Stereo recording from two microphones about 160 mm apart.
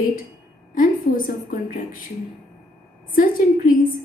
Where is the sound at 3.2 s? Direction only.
60° left (ahead or behind).